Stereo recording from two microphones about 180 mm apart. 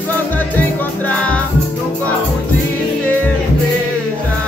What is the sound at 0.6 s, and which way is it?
Music, 5° left (ahead or behind).